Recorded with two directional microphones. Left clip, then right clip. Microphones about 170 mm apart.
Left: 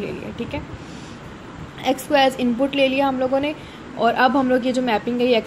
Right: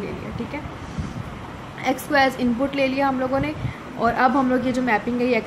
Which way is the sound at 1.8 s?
15° left (ahead or behind).